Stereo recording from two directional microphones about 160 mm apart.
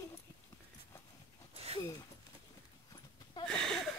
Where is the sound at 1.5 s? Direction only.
40° right (ahead or behind).